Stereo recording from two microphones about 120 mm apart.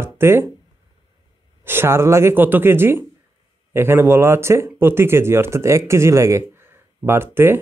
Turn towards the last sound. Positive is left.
turn(degrees=-20)  # may be behind; listen again after turning